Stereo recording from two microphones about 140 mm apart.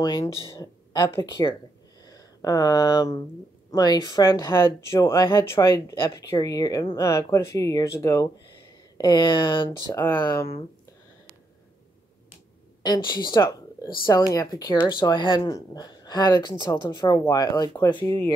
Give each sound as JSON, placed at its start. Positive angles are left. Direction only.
{"t": 0.0, "sound": "a woman's voice", "side_deg": 30}
{"t": 12.8, "sound": "speech", "side_deg": 30}
{"t": 15.1, "sound": "speech", "side_deg": 35}